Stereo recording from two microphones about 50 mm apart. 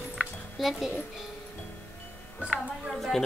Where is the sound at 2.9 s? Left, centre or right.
Centre.